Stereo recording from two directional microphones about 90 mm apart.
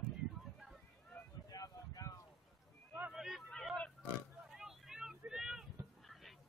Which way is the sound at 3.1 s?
Centre (ahead or behind).